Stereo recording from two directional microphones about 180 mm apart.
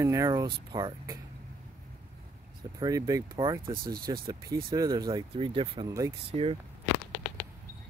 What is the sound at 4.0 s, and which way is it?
Speech, 20° right (ahead or behind).